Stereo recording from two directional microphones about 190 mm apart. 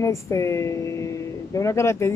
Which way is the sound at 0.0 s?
15° left (ahead or behind).